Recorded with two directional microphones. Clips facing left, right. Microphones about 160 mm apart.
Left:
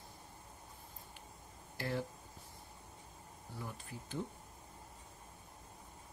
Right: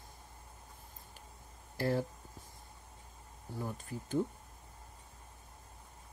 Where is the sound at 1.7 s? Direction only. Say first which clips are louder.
Right 6 dB; 40° right (ahead or behind).